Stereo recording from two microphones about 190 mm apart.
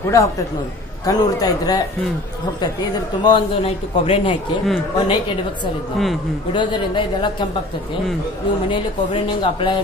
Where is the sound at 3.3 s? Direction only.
30° left (ahead or behind).